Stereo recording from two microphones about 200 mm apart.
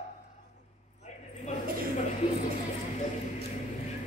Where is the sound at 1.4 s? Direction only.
35° left (ahead or behind).